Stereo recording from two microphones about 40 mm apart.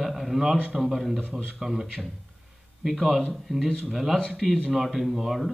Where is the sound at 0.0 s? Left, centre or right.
Centre.